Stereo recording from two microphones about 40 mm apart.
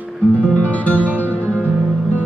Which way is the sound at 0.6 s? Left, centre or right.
Left.